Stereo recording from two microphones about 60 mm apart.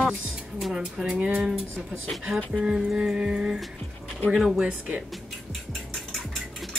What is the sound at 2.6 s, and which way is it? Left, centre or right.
Music, centre.